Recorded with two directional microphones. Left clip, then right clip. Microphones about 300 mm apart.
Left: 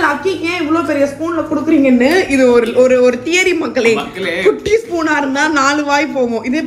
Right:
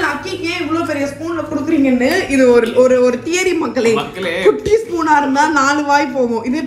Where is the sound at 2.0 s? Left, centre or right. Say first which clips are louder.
Left 3 dB; centre.